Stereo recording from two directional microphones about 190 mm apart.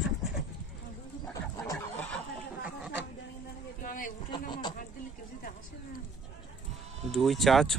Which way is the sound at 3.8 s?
45° left (ahead or behind).